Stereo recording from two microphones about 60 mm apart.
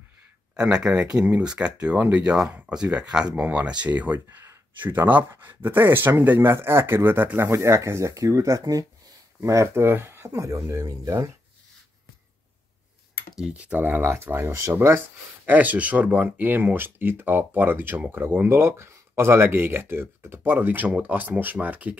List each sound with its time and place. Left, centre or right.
0.6 s speech: centre; by 8.8 s right
9.4 s speech: right
9.8 s speech: right
10.3 s speech: right
13.5 s speech: right
14.0 s speech: right
15.4 s speech: right